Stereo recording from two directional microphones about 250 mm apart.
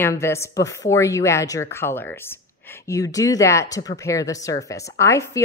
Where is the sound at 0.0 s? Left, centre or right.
Centre.